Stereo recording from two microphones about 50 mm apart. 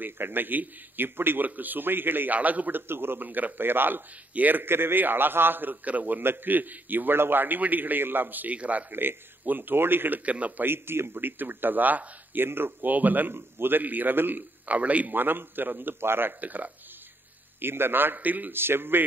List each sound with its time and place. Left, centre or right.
0.0 s a man's voice: right
2.9 s a man's voice: right
8.9 s a man's voice: right
10.2 s a man's voice: right
10.6 s a man's voice: right
12.4 s a man's voice: right
13.3 s a man's voice: right
14.7 s a man's voice: right
15.1 s a man's voice: right
16.3 s a man's voice: right
17.6 s a man's voice: right
18.6 s a man's voice: right